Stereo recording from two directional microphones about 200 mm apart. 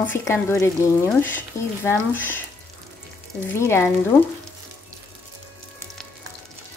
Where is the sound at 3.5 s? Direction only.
15° left (ahead or behind).